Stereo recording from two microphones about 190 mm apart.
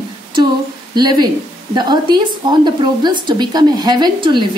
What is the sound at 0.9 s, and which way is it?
A woman's voice, 20° right (ahead or behind).